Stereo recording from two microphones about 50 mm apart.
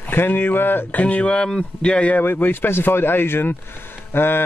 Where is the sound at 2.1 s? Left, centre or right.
Left.